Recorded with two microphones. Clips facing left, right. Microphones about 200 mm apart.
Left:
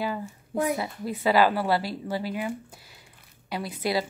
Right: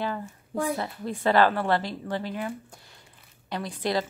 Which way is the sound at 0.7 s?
5° left (ahead or behind).